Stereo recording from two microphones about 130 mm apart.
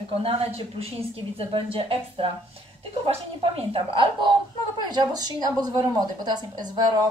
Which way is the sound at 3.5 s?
45° right (ahead or behind).